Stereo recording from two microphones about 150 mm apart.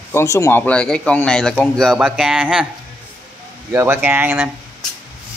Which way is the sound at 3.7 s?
15° right (ahead or behind).